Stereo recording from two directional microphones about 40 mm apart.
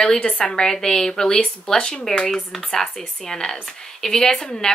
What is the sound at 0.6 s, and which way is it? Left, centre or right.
Speech, centre.